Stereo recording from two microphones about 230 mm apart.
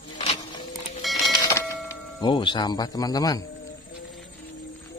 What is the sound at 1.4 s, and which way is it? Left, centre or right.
Speech, centre.